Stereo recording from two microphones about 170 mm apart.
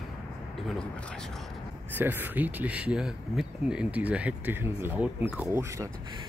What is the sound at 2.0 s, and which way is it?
Speech, 10° right (ahead or behind).